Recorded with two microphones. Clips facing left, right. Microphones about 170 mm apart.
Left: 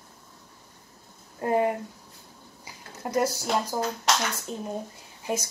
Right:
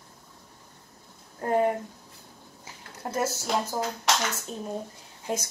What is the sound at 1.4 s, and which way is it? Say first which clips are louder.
Speech: even; 15° left (ahead or behind).